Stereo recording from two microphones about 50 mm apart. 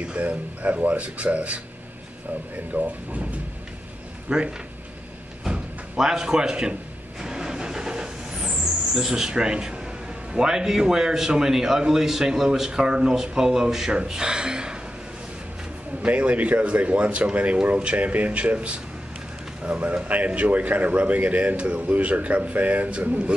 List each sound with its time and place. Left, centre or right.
0.0 s a man's voice: right
2.7 s a man's voice: right
4.3 s a man's voice: centre
5.4 s a sound: centre
8.9 s a man's voice: centre
16.0 s a man's voice: right